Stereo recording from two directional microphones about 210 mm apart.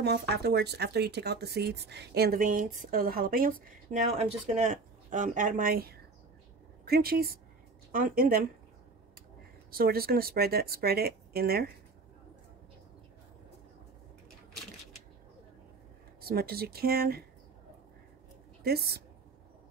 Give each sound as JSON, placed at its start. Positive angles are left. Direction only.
{"t": 0.0, "sound": "speech", "side_deg": -50}
{"t": 9.7, "sound": "speech", "side_deg": -45}
{"t": 16.2, "sound": "speech", "side_deg": -45}